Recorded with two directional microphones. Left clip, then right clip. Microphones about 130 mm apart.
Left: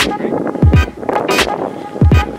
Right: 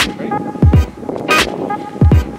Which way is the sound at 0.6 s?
Centre (ahead or behind).